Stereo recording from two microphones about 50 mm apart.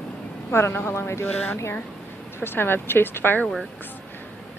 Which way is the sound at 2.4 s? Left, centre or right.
Left.